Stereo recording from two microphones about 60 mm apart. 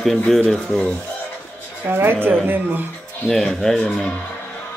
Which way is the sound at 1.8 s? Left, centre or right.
Right.